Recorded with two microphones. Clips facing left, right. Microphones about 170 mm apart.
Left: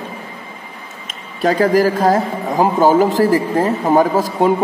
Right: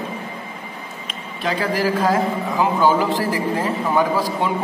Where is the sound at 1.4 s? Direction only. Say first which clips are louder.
Left 8 dB; 45° left (ahead or behind).